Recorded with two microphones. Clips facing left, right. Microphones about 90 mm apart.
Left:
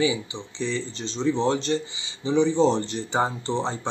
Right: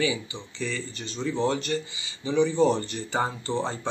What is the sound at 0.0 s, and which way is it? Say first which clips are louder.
Speech: left 3 dB; 20° left (ahead or behind).